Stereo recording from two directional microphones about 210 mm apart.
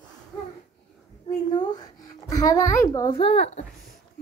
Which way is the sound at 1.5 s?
20° left (ahead or behind).